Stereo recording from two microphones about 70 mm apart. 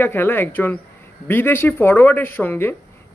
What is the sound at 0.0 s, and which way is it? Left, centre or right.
Speech, left.